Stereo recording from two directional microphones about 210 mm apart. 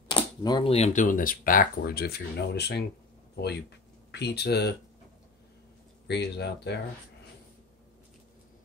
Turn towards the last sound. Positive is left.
turn(degrees=55)  # may be behind; listen again after turning